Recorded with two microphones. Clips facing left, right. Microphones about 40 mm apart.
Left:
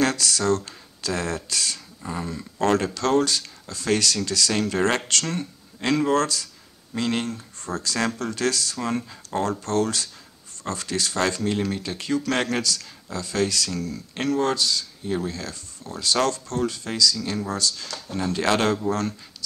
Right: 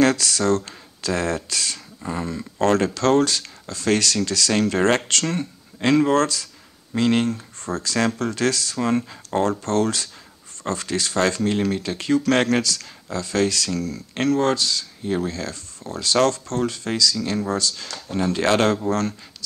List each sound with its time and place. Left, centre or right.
0.0 s speech: right
17.8 s speech: centre
18.1 s speech: right